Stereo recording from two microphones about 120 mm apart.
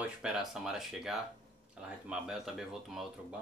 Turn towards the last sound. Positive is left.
turn(degrees=0)  # may be behind; listen again after turning